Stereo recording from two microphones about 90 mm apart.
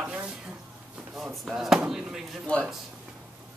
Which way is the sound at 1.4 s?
5° right (ahead or behind).